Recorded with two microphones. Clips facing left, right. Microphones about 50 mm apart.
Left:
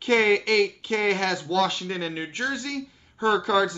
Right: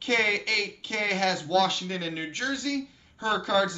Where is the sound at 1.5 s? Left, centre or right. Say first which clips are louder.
Left 1 dB; centre.